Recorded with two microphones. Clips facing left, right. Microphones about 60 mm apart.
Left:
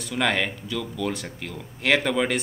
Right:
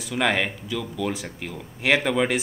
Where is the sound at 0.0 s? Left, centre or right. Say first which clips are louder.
Right 1 dB; centre.